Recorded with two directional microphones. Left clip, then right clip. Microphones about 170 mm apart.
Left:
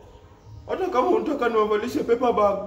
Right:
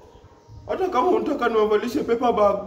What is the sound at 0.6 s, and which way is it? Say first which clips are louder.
A man's voice: right 1 dB; 15° right (ahead or behind).